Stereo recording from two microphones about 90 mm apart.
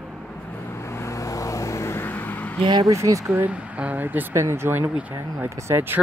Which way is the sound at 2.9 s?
35° right (ahead or behind).